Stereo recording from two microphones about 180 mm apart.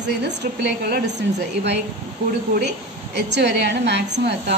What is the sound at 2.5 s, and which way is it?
A woman's voice, 70° right (ahead or behind).